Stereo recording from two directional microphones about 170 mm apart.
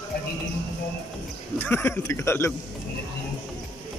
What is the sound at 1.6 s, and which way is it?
Speech, 10° left (ahead or behind).